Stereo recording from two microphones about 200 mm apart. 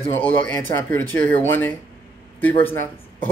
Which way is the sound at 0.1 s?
10° left (ahead or behind).